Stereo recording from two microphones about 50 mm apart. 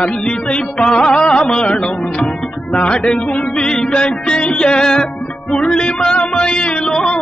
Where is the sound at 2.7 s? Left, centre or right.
Centre.